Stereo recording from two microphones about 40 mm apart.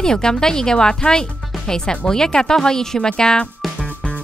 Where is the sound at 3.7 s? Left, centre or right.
Left.